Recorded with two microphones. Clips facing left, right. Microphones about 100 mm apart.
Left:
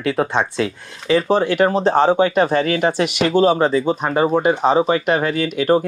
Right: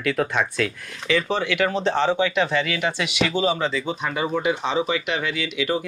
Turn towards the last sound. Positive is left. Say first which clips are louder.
# left 8 dB
turn(degrees=45)  # may be behind; listen again after turning